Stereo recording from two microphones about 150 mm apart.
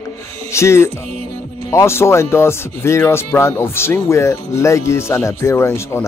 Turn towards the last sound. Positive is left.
turn(degrees=15)  # may be behind; listen again after turning